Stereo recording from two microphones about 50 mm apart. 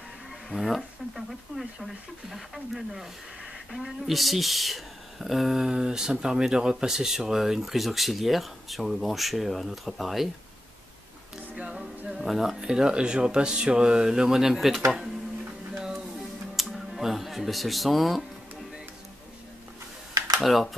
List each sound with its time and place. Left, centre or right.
0.5 s speech: centre
11.5 s a capella: centre
12.1 s music: centre
12.5 s speech: centre
15.7 s music: centre
16.5 s a sound: centre
20.4 s speech: centre